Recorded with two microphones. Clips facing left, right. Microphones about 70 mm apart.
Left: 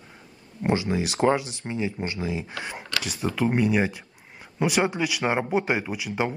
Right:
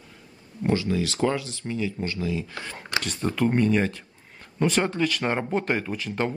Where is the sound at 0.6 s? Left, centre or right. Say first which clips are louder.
Even; left.